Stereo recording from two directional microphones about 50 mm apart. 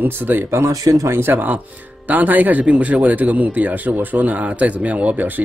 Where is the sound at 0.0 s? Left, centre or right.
Right.